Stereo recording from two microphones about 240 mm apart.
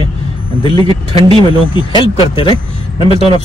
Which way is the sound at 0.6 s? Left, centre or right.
Right.